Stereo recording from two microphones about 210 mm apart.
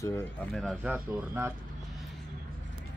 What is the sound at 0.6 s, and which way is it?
Speech, centre (ahead or behind).